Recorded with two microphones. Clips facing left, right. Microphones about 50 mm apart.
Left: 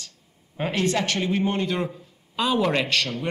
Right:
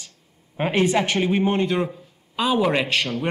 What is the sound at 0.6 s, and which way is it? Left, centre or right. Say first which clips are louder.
Speech: right 4 dB; right.